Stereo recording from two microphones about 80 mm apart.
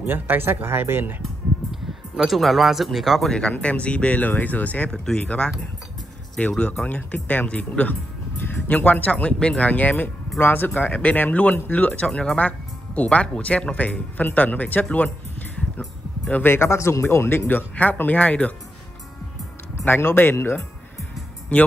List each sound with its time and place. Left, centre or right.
0.0 s speech: right
1.7 s speech: centre
3.3 s speech: centre
16.4 s speech: left
19.8 s speech: left